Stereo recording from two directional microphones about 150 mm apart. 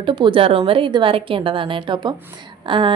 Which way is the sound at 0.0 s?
35° right (ahead or behind).